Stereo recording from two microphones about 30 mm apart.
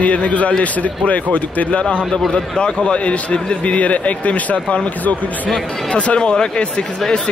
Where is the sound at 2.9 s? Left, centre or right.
Left.